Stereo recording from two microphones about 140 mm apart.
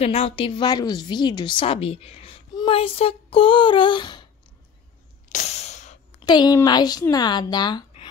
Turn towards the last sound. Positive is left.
turn(degrees=30)  # may be behind; listen again after turning